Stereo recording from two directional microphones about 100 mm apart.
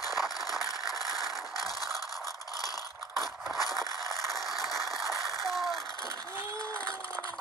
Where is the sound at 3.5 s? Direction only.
40° left (ahead or behind).